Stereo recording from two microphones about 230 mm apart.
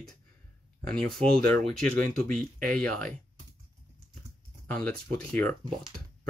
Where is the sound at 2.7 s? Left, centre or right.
Centre.